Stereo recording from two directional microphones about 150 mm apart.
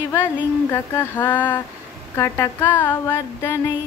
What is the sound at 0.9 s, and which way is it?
Speech, 15° left (ahead or behind).